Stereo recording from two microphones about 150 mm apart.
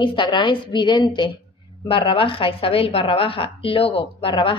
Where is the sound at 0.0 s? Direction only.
35° left (ahead or behind).